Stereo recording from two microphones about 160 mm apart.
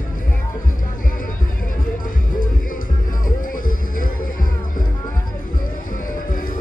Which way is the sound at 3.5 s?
60° left (ahead or behind).